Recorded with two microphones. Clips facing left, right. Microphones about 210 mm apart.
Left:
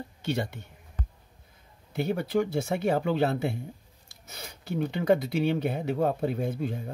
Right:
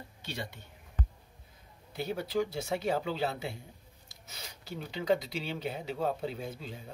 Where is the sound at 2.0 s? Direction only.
60° left (ahead or behind).